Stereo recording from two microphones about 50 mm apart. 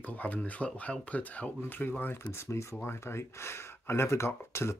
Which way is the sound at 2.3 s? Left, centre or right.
Left.